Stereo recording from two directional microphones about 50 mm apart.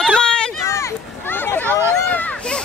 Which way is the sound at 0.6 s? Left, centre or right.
Left.